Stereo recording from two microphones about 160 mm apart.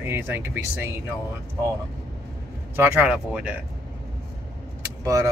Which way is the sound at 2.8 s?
10° right (ahead or behind).